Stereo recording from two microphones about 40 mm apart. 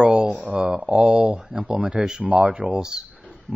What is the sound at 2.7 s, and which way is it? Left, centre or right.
Speech, centre.